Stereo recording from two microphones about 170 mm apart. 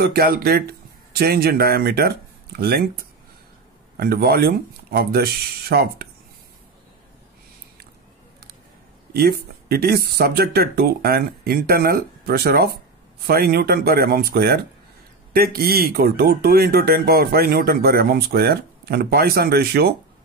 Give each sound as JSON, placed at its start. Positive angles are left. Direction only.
{"t": 0.0, "sound": "speech", "side_deg": -65}
{"t": 3.9, "sound": "speech", "side_deg": -65}
{"t": 9.1, "sound": "speech", "side_deg": -65}